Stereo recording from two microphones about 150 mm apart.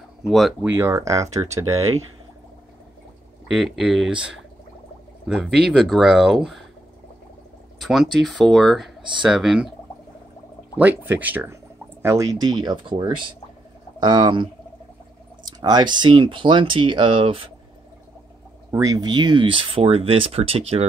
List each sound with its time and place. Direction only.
0.3 s speech: centre (ahead or behind)
0.7 s speech: 15° right (ahead or behind)
3.4 s speech: centre (ahead or behind)
7.8 s speech: centre (ahead or behind)
10.8 s speech: 10° right (ahead or behind); by 17.5 s 35° right (ahead or behind)
18.7 s speech: 25° right (ahead or behind); by 20.8 s 40° right (ahead or behind)